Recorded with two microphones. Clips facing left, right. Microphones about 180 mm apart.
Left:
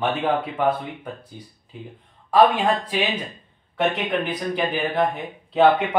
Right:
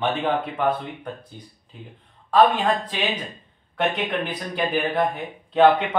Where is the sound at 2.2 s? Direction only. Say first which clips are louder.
Left 1 dB; 10° left (ahead or behind).